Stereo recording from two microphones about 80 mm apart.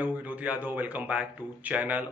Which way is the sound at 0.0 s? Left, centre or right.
Centre.